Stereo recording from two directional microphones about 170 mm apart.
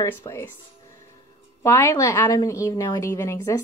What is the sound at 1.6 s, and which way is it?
A woman's voice, 15° left (ahead or behind).